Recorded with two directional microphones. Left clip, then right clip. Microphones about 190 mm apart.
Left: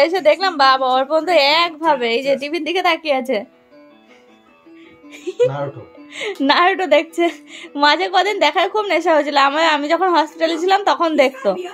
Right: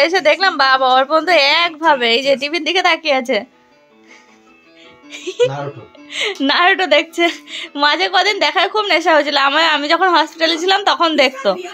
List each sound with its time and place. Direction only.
0.0 s speech: centre (ahead or behind)
5.1 s speech: 5° left (ahead or behind)